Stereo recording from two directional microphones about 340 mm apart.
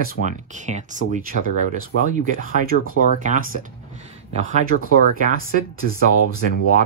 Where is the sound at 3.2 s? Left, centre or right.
Right.